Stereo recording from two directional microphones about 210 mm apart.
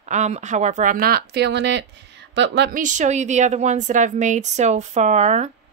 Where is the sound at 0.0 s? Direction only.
35° right (ahead or behind); by 2.8 s 55° right (ahead or behind).